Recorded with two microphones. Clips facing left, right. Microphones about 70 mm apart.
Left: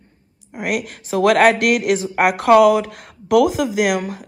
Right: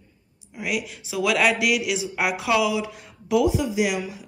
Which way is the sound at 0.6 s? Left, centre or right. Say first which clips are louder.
Left 5 dB; left.